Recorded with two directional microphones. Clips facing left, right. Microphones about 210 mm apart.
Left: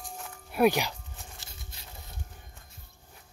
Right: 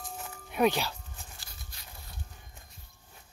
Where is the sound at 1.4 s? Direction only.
25° left (ahead or behind).